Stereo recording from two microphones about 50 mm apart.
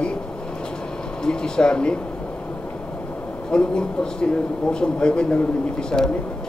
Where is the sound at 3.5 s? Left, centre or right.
Centre.